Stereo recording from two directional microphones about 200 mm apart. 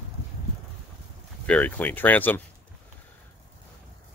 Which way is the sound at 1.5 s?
10° left (ahead or behind).